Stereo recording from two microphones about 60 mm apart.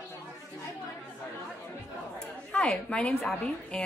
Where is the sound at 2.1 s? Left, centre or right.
Centre.